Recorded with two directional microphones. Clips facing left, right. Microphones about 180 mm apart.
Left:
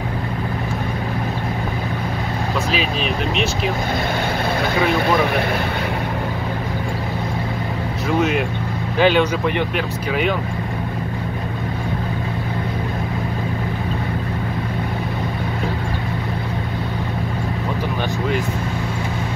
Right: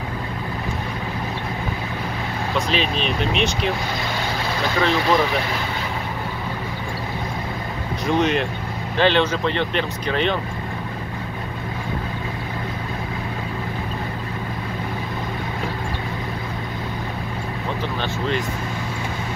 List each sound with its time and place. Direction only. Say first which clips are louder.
2.7 s speech: left 1 dB; 5° left (ahead or behind)
4.6 s speech: even; 15° left (ahead or behind)
8.1 s speech: left 1 dB; 5° left (ahead or behind)